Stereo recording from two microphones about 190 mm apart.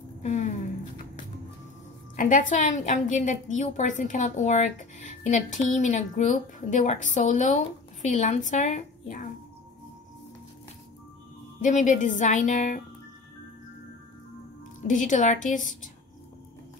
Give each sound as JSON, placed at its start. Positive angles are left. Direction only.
{"t": 0.2, "sound": "a sound", "side_deg": 35}
{"t": 2.1, "sound": "a woman's voice", "side_deg": 40}
{"t": 11.6, "sound": "a woman's voice", "side_deg": 40}
{"t": 14.9, "sound": "a woman's voice", "side_deg": 40}